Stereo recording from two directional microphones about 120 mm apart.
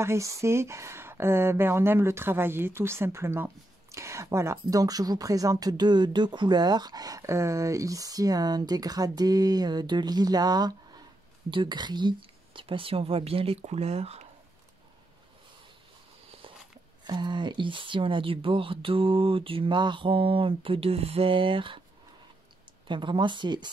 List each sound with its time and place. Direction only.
0.0 s speech: 25° right (ahead or behind); by 14.2 s 60° right (ahead or behind)
17.0 s speech: 40° right (ahead or behind)
22.8 s speech: 40° right (ahead or behind)